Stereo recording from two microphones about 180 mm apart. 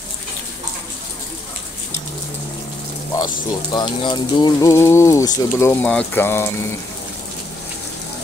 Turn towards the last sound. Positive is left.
turn(degrees=15)  # may be behind; listen again after turning